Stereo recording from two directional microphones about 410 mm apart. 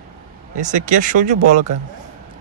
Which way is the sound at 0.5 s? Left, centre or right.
Centre.